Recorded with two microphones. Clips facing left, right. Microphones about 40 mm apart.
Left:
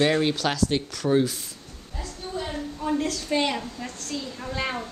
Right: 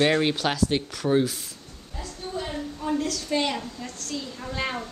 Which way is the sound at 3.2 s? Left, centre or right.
Centre.